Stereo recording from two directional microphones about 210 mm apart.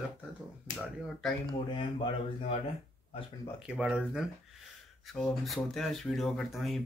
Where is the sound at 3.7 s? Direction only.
5° right (ahead or behind).